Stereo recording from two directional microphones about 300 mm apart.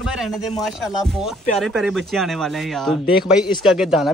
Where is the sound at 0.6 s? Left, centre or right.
Centre.